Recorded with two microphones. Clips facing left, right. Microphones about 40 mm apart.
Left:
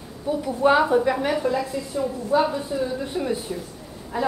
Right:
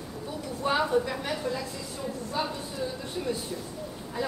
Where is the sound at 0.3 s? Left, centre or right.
Left.